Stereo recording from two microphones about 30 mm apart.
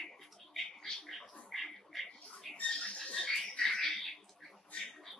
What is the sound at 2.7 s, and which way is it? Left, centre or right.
Rodents, left.